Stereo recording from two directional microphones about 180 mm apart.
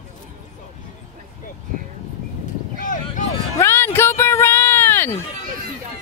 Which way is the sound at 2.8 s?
45° left (ahead or behind).